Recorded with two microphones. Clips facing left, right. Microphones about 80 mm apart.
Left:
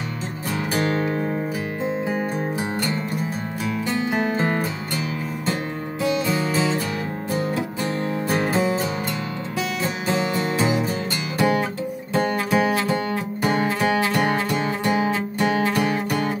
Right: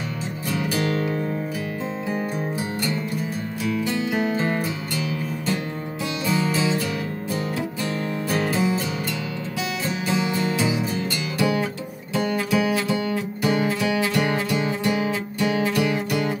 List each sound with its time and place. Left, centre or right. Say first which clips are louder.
0.7 s music: left 3 dB; left
3.6 s music: even; left
6.2 s music: even; left
8.3 s music: left 1 dB; left
10.0 s music: even; left